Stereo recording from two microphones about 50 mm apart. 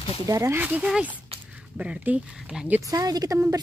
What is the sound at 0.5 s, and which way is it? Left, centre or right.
Speech, right.